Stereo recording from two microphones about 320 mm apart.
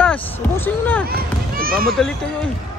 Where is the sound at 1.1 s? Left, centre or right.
Right.